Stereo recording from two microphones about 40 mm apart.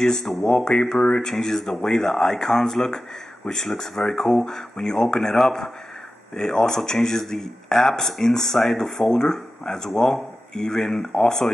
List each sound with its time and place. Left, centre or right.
0.0 s speech: centre
0.9 s speech: left
1.2 s speech: centre
5.4 s speech: centre